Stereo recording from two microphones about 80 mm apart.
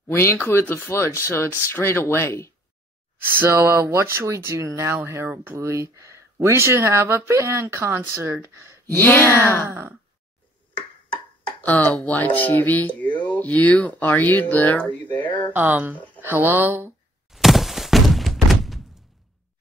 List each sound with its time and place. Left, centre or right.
0.1 s speech: left
3.3 s speech: right
8.9 s speech: left
9.7 s speech: right
11.4 s speech: left
15.5 s speech: right
17.3 s thunk: centre